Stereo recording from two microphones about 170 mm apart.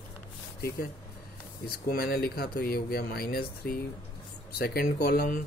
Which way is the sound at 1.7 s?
60° left (ahead or behind).